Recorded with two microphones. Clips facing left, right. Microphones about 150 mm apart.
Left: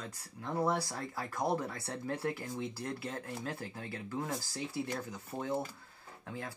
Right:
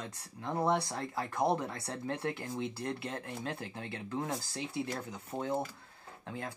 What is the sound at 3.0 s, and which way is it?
Speech, 25° right (ahead or behind).